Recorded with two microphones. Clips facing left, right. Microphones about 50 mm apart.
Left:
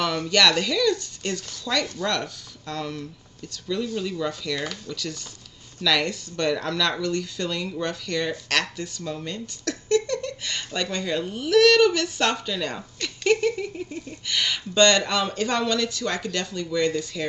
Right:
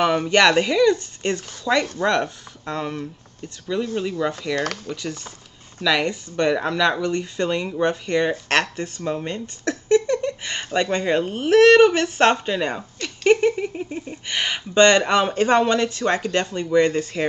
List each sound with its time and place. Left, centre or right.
0.0 s speech: right